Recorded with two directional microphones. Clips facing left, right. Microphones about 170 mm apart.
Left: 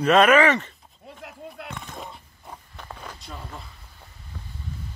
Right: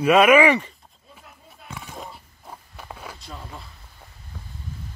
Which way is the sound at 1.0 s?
80° left.